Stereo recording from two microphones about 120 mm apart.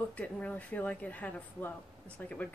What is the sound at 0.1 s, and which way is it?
Speech, 10° left (ahead or behind).